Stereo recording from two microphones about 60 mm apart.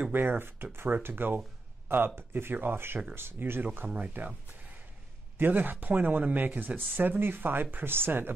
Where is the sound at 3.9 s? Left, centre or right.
Right.